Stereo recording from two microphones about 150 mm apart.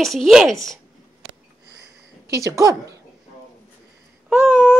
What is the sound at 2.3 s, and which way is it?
Speech, 20° right (ahead or behind).